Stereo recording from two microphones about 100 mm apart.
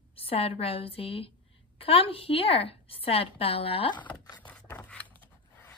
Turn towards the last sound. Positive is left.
turn(degrees=20)  # may be behind; listen again after turning